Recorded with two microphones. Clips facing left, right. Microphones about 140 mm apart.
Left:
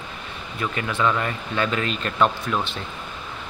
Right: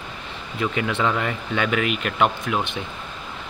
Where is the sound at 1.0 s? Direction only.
20° right (ahead or behind).